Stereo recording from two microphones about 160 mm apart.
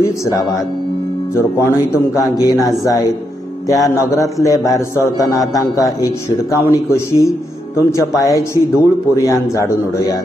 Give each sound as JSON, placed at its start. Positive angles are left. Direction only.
{"t": 0.0, "sound": "speech", "side_deg": 20}